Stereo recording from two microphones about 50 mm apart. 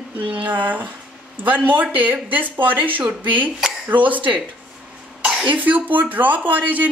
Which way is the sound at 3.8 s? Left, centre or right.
Right.